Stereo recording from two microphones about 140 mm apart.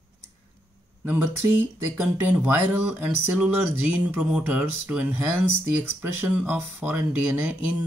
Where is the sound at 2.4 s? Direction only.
15° right (ahead or behind).